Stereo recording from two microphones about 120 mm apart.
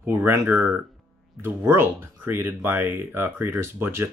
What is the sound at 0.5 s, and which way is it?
Speech, 5° right (ahead or behind).